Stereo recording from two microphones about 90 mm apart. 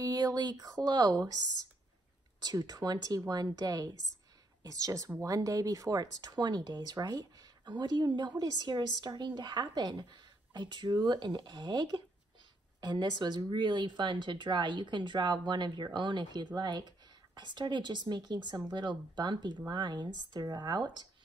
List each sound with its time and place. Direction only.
0.0 s speech: 45° right (ahead or behind)